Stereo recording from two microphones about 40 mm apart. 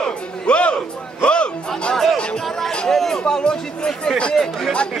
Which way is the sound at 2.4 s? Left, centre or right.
Centre.